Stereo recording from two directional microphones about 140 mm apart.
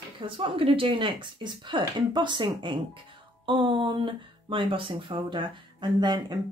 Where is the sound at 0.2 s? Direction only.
40° right (ahead or behind).